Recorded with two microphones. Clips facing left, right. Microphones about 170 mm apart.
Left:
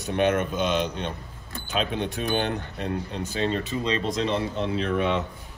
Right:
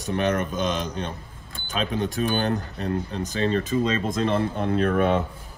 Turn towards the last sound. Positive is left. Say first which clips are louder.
# right 4 dB
turn(degrees=-50)  # may be behind; listen again after turning